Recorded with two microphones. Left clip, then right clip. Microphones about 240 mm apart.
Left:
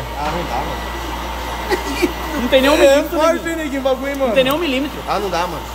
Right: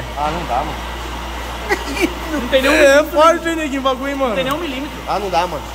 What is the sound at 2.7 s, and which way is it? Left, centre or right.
A man's voice, centre.